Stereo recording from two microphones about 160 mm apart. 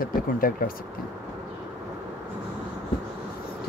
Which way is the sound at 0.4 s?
65° left (ahead or behind).